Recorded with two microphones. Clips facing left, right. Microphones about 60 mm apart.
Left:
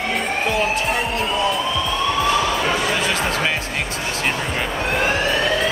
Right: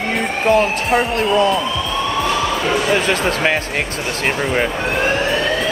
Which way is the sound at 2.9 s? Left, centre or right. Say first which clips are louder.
Right 4 dB; right.